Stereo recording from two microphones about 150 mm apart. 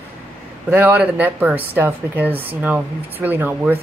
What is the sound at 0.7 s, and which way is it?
Speech, 15° right (ahead or behind).